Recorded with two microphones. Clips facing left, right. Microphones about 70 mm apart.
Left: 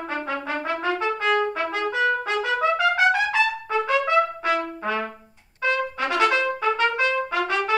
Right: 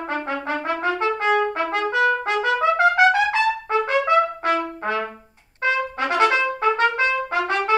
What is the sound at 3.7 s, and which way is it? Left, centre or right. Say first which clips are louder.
Trumpet: right 2 dB; right.